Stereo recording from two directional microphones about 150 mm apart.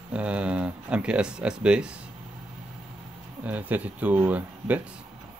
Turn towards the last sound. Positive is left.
turn(degrees=-10)  # may be behind; listen again after turning